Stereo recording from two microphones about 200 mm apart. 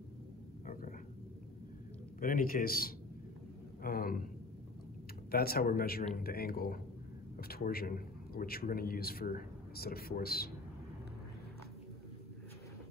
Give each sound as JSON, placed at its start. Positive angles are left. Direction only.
{"t": 2.1, "sound": "a man's voice", "side_deg": 45}
{"t": 5.3, "sound": "a man's voice", "side_deg": 50}